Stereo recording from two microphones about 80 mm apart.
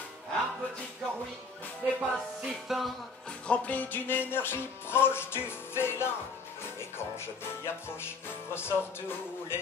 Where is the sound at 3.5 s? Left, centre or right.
Centre.